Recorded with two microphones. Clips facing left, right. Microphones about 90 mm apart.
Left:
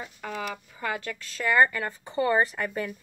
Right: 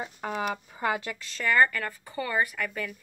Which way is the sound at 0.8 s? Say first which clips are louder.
Right 3 dB; 20° right (ahead or behind).